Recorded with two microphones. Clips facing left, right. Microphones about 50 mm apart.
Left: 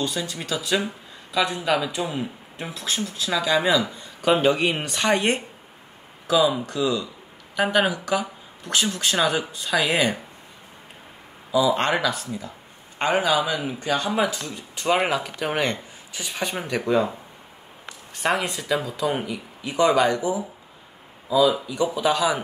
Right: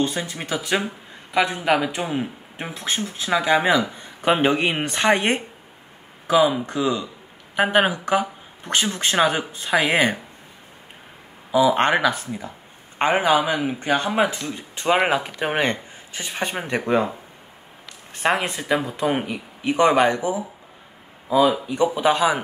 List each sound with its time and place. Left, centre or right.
0.0 s speech: right
11.5 s speech: right
18.1 s speech: right